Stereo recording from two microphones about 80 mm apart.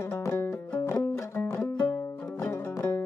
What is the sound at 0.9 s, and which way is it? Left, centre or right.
Music, centre.